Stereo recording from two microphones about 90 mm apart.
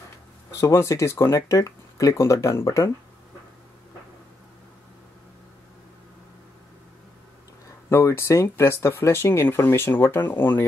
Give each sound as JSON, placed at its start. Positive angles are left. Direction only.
{"t": 0.5, "sound": "speech", "side_deg": 35}
{"t": 7.9, "sound": "speech", "side_deg": 30}